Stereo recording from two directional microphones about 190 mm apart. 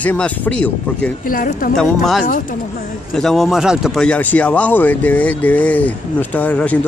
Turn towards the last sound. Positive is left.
turn(degrees=5)  # may be behind; listen again after turning